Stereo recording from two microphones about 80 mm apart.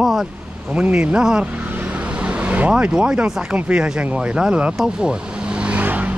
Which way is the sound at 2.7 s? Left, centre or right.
Centre.